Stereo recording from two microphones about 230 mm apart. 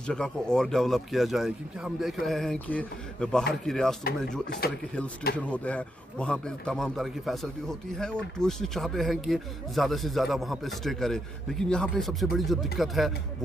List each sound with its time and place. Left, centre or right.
0.0 s speech: centre
4.5 s speech: left
5.4 s speech: centre